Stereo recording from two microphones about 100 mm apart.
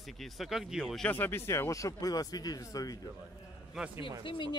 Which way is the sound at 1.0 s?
20° left (ahead or behind).